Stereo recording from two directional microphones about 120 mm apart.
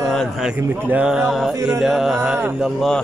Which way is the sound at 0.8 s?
10° right (ahead or behind).